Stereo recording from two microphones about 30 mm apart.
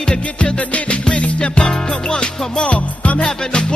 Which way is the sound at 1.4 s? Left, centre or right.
Left.